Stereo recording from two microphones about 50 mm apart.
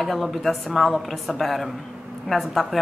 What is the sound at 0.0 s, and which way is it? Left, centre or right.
A woman's voice, centre.